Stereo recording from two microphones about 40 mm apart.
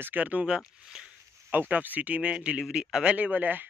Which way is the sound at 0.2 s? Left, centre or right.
Right.